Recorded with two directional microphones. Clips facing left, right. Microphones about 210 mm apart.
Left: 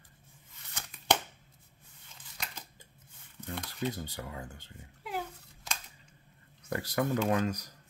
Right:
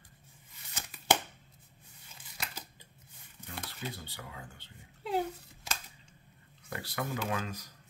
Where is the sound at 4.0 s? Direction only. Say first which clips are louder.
Left 6 dB; 45° left (ahead or behind).